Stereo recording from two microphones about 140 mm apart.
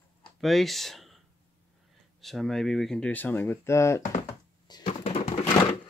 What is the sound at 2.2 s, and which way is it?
Speech, centre (ahead or behind).